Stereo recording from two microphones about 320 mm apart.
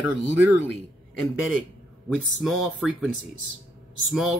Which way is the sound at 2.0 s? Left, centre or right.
Centre.